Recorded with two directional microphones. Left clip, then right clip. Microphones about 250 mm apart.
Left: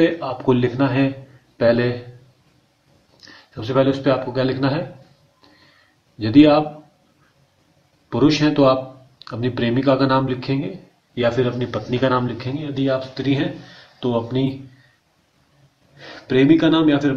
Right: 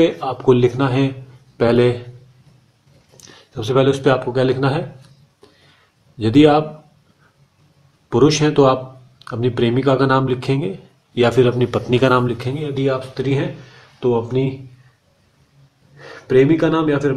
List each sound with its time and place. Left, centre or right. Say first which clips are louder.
0.0 s a man's voice: right 3 dB; centre
3.5 s a man's voice: right 2 dB; right
6.1 s a man's voice: right 1 dB; centre
8.1 s a man's voice: right 3 dB; centre
16.3 s speech: right 1 dB; centre